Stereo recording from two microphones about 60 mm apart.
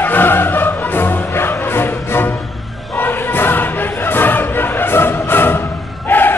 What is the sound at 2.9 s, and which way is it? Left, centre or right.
Choir, left.